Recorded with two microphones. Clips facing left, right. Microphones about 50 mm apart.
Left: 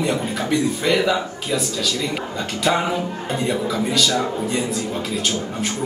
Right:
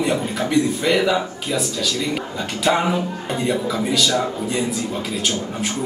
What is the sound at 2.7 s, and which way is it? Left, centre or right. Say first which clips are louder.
A man's voice: right 2 dB; centre.